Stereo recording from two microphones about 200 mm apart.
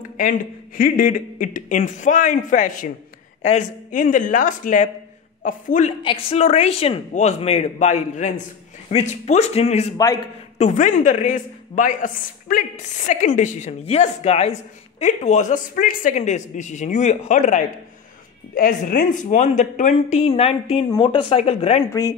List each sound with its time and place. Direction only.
0.2 s speech: 45° left (ahead or behind)